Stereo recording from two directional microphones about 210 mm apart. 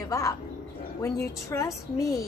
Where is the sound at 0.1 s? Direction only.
15° left (ahead or behind).